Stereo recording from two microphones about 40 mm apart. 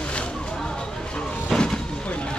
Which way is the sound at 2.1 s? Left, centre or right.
Left.